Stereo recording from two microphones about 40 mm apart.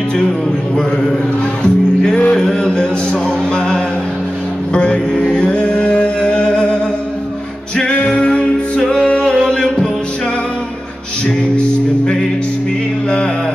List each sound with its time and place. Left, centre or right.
1.6 s music: left